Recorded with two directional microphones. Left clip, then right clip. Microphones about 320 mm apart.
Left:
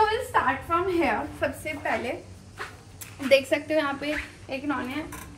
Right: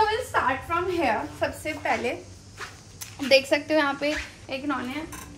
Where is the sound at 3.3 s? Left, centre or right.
Right.